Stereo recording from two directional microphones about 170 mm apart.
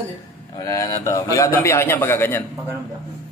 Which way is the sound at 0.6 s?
20° left (ahead or behind).